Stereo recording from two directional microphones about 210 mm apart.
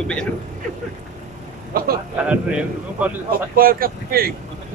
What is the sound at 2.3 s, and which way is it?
Speech, 5° right (ahead or behind).